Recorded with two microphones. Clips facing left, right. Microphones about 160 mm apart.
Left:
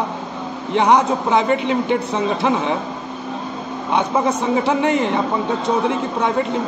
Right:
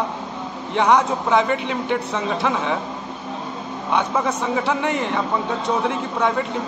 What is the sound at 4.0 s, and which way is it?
Speech, 15° left (ahead or behind).